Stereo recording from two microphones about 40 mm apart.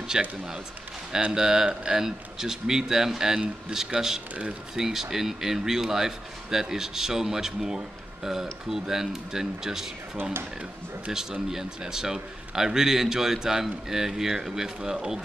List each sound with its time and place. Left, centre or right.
0.1 s speech: centre
1.3 s speech: centre
11.1 s speech: centre